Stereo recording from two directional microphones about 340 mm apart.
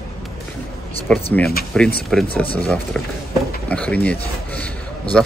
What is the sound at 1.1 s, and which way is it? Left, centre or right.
Speech, centre.